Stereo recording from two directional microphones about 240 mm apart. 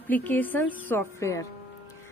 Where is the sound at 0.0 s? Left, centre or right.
Centre.